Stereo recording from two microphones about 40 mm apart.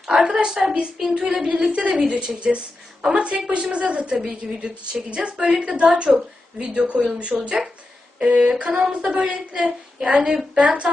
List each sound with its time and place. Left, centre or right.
0.0 s a woman's voice: centre
10.6 s speech: right